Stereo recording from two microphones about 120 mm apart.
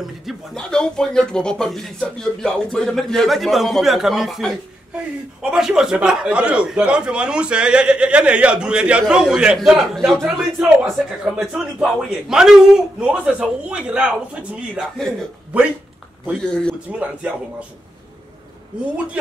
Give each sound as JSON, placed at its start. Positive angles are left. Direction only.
{"t": 0.0, "sound": "speech", "side_deg": 0}
{"t": 15.0, "sound": "speech", "side_deg": 5}
{"t": 16.4, "sound": "speech", "side_deg": 5}
{"t": 17.0, "sound": "speech", "side_deg": -10}